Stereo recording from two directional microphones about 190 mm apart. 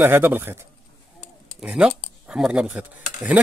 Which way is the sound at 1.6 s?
5° right (ahead or behind).